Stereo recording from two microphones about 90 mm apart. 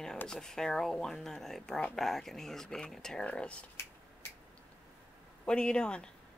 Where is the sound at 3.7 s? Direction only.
30° left (ahead or behind).